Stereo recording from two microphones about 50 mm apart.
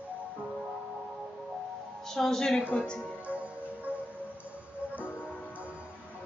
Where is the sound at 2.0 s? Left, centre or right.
Centre.